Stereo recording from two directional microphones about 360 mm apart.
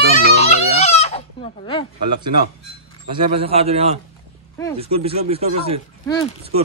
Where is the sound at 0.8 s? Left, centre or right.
Centre.